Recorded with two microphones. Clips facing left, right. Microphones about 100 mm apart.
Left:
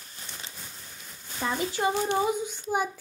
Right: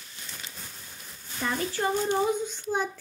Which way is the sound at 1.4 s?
15° left (ahead or behind).